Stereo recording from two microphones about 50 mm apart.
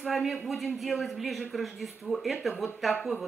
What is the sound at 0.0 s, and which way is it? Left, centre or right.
A man's voice, centre.